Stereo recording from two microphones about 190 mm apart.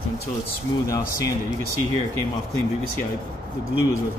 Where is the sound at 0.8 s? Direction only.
15° left (ahead or behind).